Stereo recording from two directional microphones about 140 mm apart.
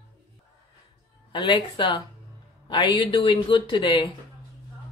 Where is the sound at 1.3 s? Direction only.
35° left (ahead or behind).